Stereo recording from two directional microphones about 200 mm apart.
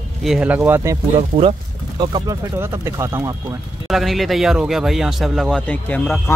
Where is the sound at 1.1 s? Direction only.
30° right (ahead or behind).